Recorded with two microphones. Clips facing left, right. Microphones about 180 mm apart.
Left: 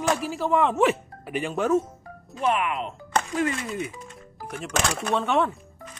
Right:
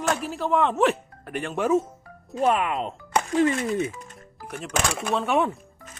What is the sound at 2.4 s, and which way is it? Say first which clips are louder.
Speech: right 2 dB; 35° right (ahead or behind).